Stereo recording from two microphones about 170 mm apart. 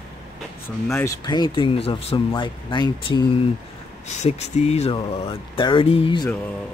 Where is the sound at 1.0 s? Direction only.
25° left (ahead or behind).